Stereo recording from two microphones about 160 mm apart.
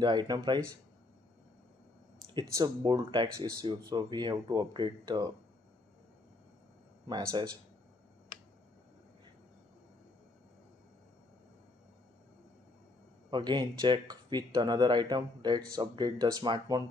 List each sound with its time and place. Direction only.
0.0 s speech: 25° right (ahead or behind)
2.5 s speech: 25° right (ahead or behind)
7.1 s speech: 25° right (ahead or behind)
13.3 s speech: 25° right (ahead or behind)